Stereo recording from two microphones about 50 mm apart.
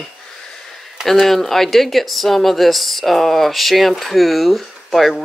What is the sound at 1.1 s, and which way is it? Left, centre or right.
Speech, centre.